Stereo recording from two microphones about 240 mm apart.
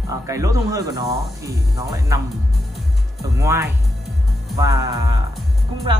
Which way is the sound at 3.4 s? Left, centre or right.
Centre.